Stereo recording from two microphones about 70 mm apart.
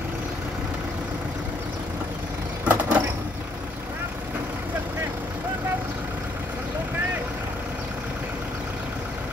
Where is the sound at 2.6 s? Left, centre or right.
Right.